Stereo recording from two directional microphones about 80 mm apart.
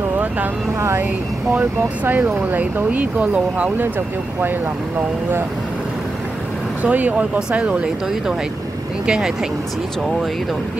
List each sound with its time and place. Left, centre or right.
0.7 s speech: right
1.5 s speech: right
6.8 s speech: centre
9.0 s speech: centre